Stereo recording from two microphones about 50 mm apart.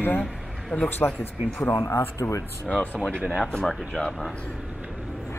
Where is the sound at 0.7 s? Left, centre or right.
Left.